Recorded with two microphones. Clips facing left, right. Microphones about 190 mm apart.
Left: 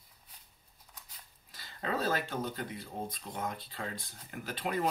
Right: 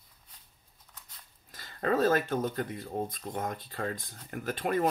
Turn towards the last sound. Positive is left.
turn(degrees=-50)  # may be behind; listen again after turning